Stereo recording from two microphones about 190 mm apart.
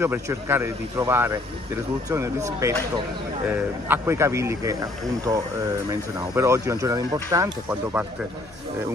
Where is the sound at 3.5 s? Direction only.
10° right (ahead or behind).